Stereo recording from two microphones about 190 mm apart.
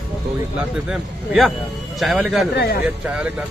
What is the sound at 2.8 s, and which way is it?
Speech, 5° right (ahead or behind).